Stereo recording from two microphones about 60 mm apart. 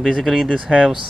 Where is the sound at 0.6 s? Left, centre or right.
Centre.